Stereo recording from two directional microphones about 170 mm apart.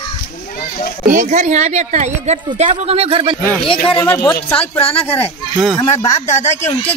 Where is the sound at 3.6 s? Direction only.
30° left (ahead or behind).